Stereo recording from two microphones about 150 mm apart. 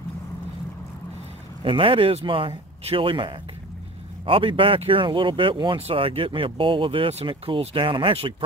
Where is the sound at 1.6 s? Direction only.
35° right (ahead or behind).